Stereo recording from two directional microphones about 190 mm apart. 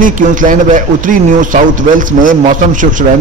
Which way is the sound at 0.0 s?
45° right (ahead or behind).